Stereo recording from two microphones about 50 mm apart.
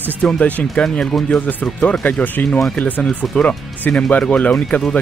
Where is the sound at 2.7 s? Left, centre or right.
Left.